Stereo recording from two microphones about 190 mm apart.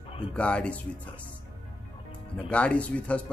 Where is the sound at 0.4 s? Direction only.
5° left (ahead or behind).